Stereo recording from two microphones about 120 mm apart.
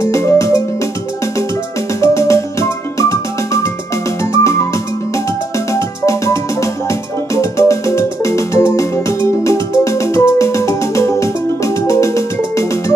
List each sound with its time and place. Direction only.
0.0 s music: 25° left (ahead or behind)
2.0 s music: 25° left (ahead or behind)
5.7 s music: 25° left (ahead or behind)